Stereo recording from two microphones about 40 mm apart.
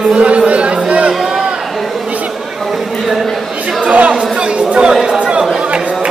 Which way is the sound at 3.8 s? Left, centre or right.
Right.